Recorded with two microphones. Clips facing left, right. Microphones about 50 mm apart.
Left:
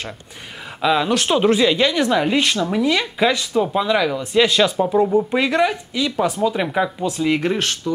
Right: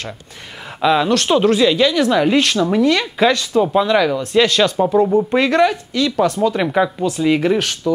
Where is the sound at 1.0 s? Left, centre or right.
Centre.